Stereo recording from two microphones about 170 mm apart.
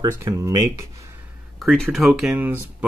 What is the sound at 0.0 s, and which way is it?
Speech, 15° right (ahead or behind).